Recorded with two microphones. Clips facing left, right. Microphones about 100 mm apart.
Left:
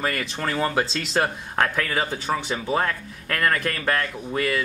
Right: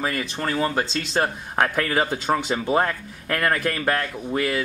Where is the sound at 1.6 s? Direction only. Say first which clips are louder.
Right 2 dB; 20° right (ahead or behind).